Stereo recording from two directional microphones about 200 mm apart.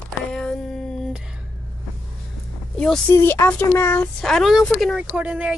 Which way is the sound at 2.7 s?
5° left (ahead or behind).